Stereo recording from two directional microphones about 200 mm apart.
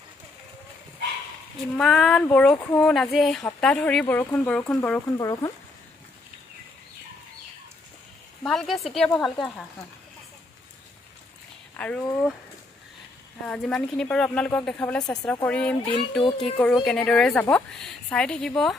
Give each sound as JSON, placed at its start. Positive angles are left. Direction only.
{"t": 1.8, "sound": "a woman's voice", "side_deg": 0}
{"t": 5.1, "sound": "speech", "side_deg": 15}
{"t": 8.4, "sound": "a woman's voice", "side_deg": 0}
{"t": 11.7, "sound": "speech", "side_deg": 10}
{"t": 13.5, "sound": "a woman's voice", "side_deg": 0}
{"t": 16.3, "sound": "speech", "side_deg": 25}
{"t": 16.5, "sound": "a woman's voice", "side_deg": 5}